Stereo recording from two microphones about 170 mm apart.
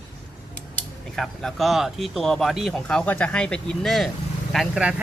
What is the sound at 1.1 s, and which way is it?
Speech, centre (ahead or behind).